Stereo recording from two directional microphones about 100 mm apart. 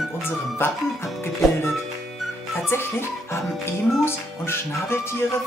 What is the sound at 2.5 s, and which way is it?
Music, 25° left (ahead or behind).